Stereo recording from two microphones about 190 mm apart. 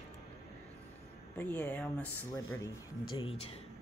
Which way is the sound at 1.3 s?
10° left (ahead or behind).